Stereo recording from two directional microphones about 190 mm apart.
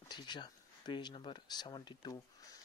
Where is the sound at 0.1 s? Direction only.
20° left (ahead or behind).